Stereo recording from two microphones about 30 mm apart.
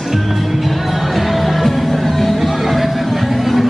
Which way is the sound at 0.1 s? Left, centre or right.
Centre.